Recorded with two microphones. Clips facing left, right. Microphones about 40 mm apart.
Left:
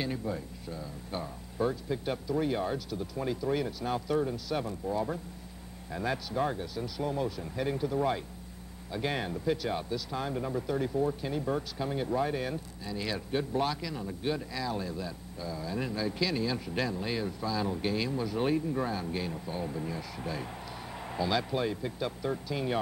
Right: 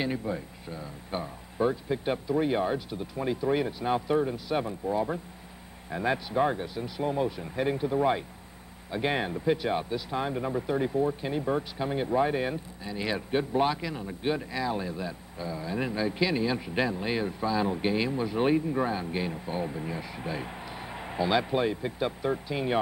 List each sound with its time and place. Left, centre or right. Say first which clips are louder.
0.0 s speech: right 3 dB; right